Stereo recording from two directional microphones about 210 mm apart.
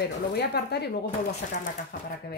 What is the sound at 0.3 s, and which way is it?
A woman's voice, 50° left (ahead or behind).